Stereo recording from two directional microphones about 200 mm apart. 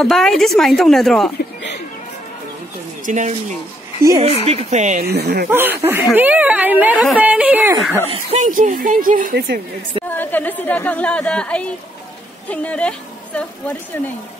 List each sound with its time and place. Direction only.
0.0 s speech: centre (ahead or behind)
3.1 s speech: 40° right (ahead or behind)
5.0 s speech: 55° right (ahead or behind)
5.5 s speech: 10° right (ahead or behind)
8.1 s a woman's voice: 35° right (ahead or behind)
10.0 s a woman's voice: 10° left (ahead or behind)